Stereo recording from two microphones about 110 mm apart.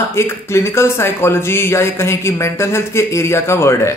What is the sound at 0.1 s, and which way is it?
Speech, 25° left (ahead or behind).